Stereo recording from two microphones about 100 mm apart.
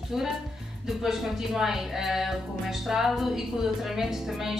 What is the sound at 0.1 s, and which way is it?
Speech, 5° right (ahead or behind).